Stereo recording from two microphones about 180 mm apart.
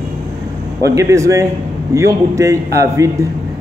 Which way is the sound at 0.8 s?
15° right (ahead or behind).